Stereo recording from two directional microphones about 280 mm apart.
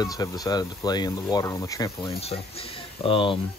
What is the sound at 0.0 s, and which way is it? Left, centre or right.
Speech, centre.